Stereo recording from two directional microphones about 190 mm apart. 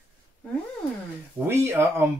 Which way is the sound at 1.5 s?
15° right (ahead or behind).